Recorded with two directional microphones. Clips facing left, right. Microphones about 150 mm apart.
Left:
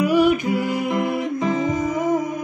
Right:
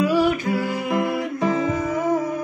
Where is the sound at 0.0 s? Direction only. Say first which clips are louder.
Left 2 dB; 15° left (ahead or behind).